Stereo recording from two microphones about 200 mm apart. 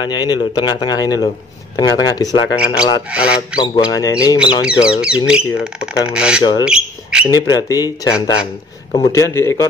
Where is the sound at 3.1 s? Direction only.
5° right (ahead or behind).